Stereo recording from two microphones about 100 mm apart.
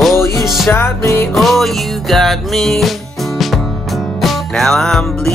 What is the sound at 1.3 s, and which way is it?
Music, centre (ahead or behind).